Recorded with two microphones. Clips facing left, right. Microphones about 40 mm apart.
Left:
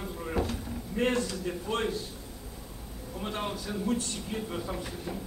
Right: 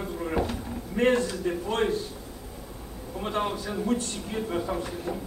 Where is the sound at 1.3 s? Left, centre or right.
Centre.